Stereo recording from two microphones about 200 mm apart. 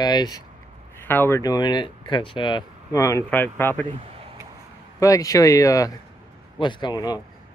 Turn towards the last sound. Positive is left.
turn(degrees=20)  # may be behind; listen again after turning